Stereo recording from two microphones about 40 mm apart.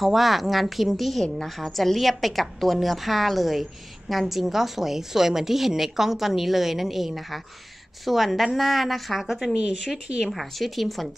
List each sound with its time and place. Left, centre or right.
0.0 s a woman's voice: centre
9.6 s speech: centre
10.3 s a woman's voice: centre